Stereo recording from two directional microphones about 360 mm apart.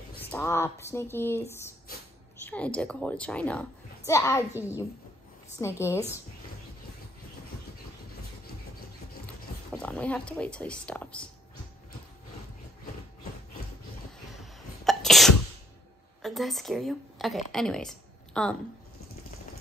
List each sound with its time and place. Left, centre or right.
0.2 s speech: centre
2.4 s a woman's voice: centre
5.6 s speech: centre
9.2 s speech: centre
14.4 s sneeze: centre
16.2 s a woman's voice: centre